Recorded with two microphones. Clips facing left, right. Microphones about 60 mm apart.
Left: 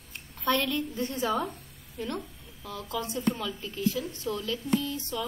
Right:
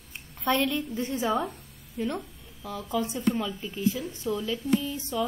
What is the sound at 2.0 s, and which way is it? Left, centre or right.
A woman's voice, centre.